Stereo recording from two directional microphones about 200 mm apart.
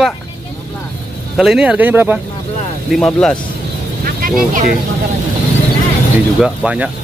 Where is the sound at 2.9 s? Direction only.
5° left (ahead or behind).